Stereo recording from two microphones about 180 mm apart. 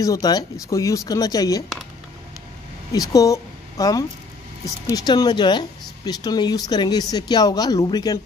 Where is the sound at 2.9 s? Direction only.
20° left (ahead or behind).